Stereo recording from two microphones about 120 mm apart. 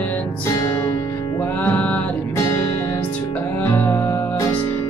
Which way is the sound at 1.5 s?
15° left (ahead or behind).